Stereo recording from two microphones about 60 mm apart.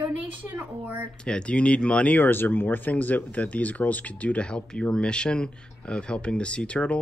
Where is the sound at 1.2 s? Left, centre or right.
Centre.